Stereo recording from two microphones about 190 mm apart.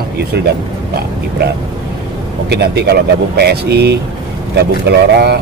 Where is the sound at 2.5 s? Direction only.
60° right (ahead or behind).